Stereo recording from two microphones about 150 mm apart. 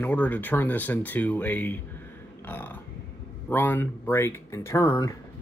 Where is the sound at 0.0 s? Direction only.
10° left (ahead or behind).